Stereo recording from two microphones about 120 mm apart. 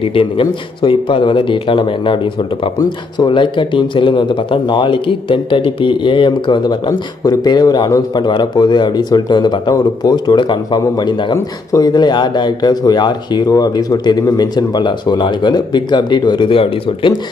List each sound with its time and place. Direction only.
0.0 s speech: 50° left (ahead or behind)